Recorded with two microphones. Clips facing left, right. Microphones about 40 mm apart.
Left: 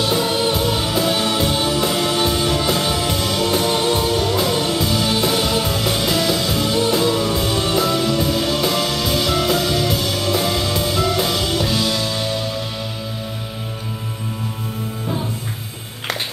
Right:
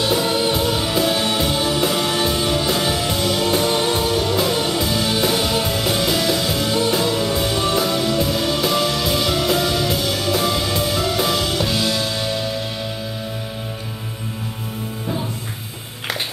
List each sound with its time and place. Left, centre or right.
0.0 s music: centre